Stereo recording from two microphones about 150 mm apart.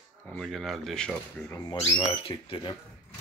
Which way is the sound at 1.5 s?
25° left (ahead or behind).